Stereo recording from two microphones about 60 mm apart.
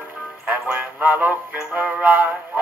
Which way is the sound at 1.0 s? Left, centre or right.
Right.